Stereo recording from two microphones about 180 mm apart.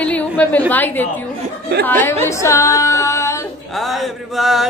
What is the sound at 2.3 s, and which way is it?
Female singing, 15° left (ahead or behind).